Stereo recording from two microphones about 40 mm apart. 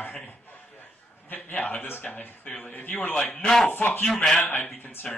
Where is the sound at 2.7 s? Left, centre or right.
Left.